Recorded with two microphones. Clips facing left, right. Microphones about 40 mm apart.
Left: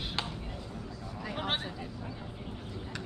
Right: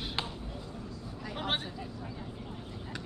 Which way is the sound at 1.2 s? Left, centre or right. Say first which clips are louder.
Even; centre.